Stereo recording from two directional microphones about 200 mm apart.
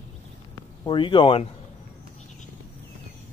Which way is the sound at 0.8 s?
25° left (ahead or behind).